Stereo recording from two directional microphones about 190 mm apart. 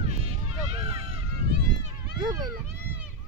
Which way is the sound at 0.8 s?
30° right (ahead or behind).